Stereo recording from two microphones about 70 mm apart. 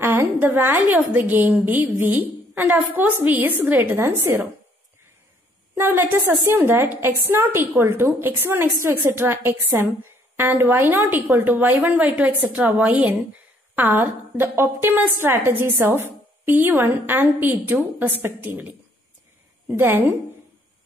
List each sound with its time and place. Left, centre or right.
0.0 s a woman's voice: right
5.8 s a woman's voice: right
19.8 s a woman's voice: right